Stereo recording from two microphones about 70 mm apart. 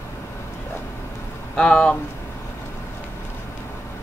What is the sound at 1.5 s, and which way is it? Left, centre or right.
Speech, centre.